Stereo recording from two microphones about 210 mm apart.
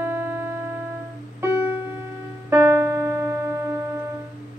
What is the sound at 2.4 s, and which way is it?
Music, 15° right (ahead or behind).